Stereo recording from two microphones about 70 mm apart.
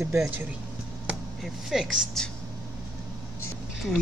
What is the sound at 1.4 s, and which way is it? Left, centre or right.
Speech, centre.